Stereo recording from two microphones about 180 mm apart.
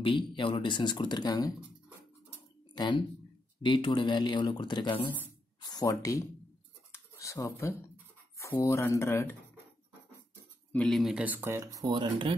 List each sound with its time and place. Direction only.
0.0 s speech: 25° left (ahead or behind)
2.7 s speech: 25° left (ahead or behind)
6.9 s a sound: 15° left (ahead or behind)
8.4 s speech: 15° left (ahead or behind)
10.7 s speech: 5° left (ahead or behind); by 12.4 s 25° right (ahead or behind)